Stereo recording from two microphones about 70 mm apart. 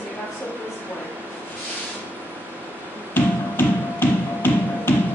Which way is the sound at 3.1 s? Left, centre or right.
Left.